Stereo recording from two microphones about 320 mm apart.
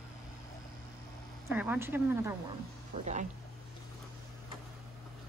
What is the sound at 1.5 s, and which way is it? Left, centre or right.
Speech, centre.